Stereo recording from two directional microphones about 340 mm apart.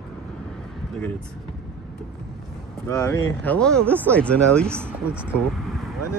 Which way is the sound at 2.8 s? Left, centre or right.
Centre.